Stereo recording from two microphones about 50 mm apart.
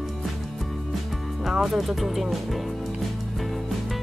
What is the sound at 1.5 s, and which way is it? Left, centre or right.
Speech, centre.